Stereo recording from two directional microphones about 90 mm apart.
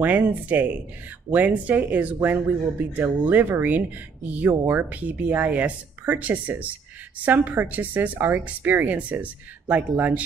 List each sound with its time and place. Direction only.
0.0 s speech: 20° right (ahead or behind)